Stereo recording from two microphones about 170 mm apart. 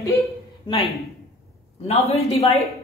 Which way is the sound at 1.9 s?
35° left (ahead or behind).